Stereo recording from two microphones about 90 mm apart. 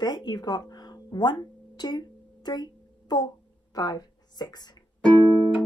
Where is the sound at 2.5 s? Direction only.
50° left (ahead or behind).